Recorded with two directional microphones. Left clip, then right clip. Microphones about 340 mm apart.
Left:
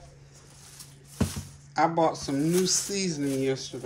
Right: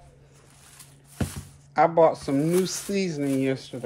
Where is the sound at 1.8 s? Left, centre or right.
Right.